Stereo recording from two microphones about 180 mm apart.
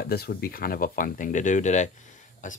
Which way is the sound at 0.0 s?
60° left (ahead or behind).